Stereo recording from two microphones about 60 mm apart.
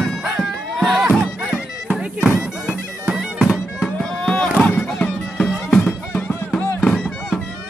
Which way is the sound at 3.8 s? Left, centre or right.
Centre.